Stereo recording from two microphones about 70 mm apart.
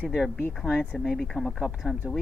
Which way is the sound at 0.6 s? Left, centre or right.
Centre.